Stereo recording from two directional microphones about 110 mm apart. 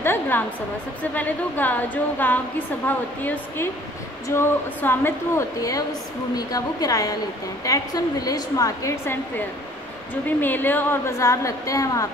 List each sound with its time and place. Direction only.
0.0 s a sound: 20° left (ahead or behind)
1.1 s a woman's voice: 15° left (ahead or behind)
5.6 s a woman's voice: 30° left (ahead or behind)
10.4 s a woman's voice: 15° left (ahead or behind)